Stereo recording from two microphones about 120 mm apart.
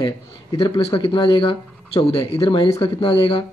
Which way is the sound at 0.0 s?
45° left (ahead or behind).